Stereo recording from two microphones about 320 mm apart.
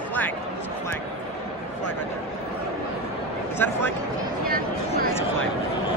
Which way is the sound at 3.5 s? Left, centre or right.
Centre.